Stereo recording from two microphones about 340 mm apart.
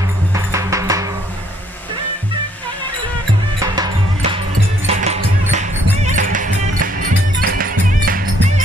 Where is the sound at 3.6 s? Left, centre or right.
Centre.